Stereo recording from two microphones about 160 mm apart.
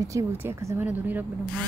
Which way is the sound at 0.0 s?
20° right (ahead or behind).